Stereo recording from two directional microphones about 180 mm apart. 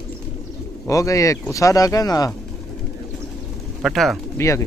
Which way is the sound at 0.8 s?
20° left (ahead or behind).